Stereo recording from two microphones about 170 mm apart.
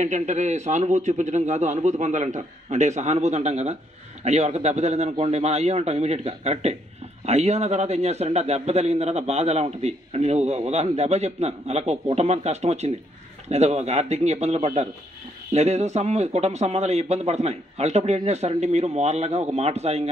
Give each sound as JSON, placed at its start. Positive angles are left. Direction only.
{"t": 0.0, "sound": "a man's voice", "side_deg": -45}